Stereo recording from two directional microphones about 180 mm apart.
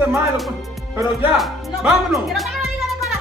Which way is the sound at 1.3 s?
Centre (ahead or behind).